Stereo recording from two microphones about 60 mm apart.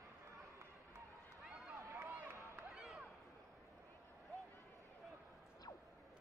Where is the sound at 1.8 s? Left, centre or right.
Right.